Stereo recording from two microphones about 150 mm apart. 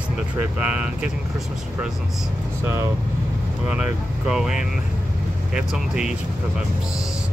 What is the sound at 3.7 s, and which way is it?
Speech, 5° right (ahead or behind).